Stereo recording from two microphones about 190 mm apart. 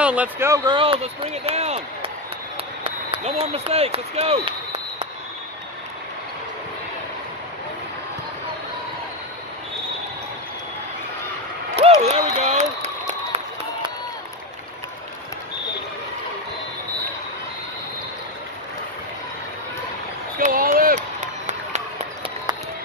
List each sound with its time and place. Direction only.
0.0 s speech: 5° right (ahead or behind)
0.7 s speech: 30° right (ahead or behind)
11.7 s speech: 35° right (ahead or behind)
12.4 s a sound: 35° right (ahead or behind)
20.4 s applause: 45° right (ahead or behind)